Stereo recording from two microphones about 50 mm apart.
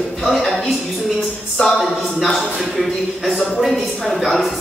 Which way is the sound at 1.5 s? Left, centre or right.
Centre.